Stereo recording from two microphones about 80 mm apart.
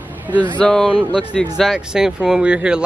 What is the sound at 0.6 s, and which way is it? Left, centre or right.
Speech, centre.